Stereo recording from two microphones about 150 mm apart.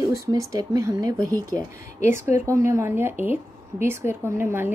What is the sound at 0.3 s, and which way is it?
Speech, 25° right (ahead or behind).